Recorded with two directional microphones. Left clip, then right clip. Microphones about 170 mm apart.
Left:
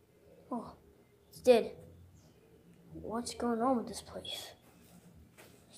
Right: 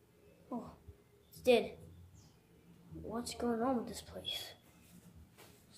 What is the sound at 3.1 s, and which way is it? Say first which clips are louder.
A woman's voice: left 2 dB; 20° left (ahead or behind).